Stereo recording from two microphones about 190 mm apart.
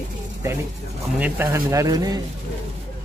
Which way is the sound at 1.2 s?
15° right (ahead or behind).